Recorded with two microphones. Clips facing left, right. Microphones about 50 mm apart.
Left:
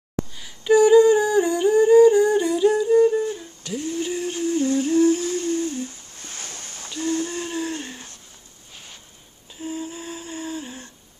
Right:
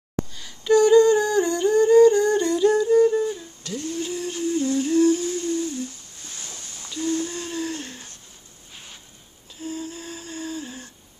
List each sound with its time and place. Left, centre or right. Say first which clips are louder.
0.4 s humming: left 2 dB; centre
3.8 s humming: left 2 dB; left
6.2 s boat: left 3 dB; left
7.0 s a sound: left 1 dB; left; by 8.1 s centre
9.6 s humming: left 1 dB; centre